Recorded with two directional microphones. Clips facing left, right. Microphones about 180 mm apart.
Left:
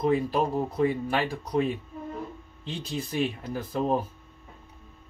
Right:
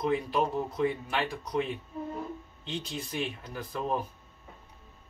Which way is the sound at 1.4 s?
30° left (ahead or behind).